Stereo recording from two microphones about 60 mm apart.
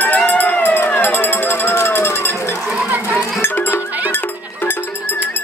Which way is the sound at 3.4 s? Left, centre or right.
Left.